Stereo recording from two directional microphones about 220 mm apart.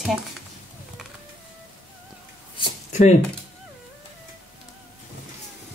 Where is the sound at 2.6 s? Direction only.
30° left (ahead or behind).